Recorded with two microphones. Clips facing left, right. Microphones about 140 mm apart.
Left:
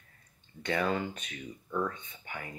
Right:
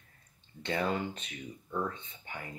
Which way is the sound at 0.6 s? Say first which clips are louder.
Left 2 dB; 25° right (ahead or behind).